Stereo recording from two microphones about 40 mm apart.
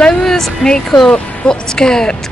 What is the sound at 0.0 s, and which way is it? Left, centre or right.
A woman's voice, centre.